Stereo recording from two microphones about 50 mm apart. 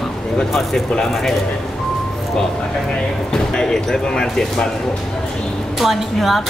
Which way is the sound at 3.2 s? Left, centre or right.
Centre.